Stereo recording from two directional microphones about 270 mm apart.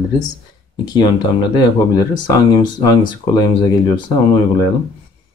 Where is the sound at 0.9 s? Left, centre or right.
Centre.